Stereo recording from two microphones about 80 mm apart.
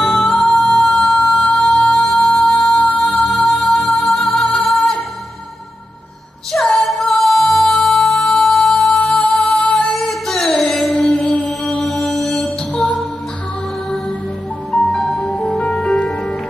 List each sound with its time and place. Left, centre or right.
0.0 s music: centre
6.5 s music: centre
11.6 s music: centre
14.7 s music: centre
16.0 s music: centre